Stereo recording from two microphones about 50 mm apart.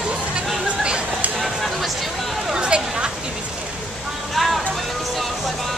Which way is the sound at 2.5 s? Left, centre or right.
Centre.